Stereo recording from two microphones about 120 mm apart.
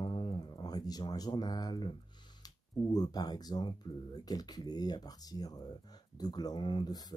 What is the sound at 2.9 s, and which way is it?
Speech, 35° left (ahead or behind).